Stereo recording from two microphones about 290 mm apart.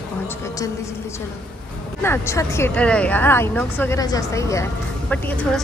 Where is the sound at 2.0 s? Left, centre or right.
Centre.